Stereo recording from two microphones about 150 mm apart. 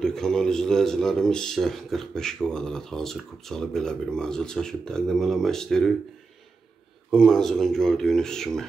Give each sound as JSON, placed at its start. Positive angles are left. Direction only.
{"t": 0.0, "sound": "speech", "side_deg": 5}
{"t": 7.1, "sound": "speech", "side_deg": 5}